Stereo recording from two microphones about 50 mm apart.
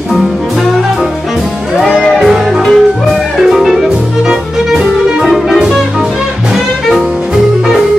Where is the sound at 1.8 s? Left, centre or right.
Centre.